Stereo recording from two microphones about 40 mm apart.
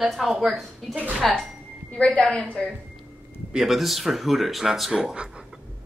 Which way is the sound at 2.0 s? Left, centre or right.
Centre.